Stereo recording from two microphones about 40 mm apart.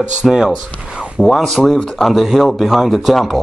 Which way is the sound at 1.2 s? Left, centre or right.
Centre.